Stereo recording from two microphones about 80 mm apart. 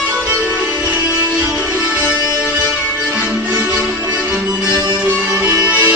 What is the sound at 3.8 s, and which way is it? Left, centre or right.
Music, centre.